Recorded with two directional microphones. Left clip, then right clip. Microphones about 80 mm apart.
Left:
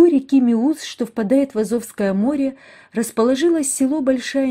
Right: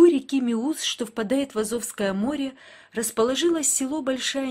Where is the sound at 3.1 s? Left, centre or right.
Left.